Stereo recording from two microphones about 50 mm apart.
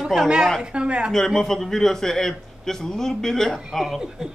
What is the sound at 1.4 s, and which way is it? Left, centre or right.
A man's voice, centre.